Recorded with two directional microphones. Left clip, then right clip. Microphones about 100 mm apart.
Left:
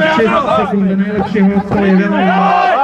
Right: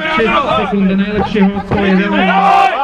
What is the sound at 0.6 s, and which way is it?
Music, 90° left.